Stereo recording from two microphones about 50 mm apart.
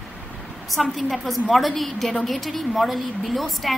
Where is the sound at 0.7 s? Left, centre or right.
Centre.